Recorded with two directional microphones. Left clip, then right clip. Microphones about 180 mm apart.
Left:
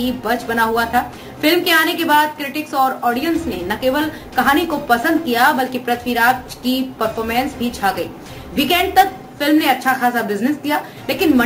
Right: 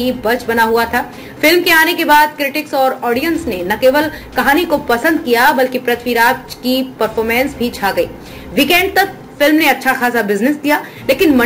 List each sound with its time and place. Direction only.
0.0 s a woman's voice: 10° right (ahead or behind)